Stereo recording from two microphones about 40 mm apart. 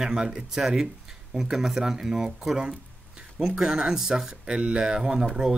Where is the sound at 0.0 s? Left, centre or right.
Centre.